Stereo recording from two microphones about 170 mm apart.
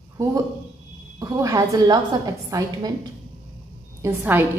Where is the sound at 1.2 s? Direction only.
20° right (ahead or behind).